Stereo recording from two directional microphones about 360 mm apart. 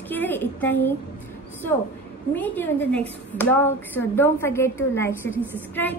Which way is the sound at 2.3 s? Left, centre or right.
Centre.